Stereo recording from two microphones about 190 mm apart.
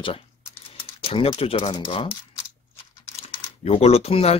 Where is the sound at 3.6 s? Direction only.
35° left (ahead or behind).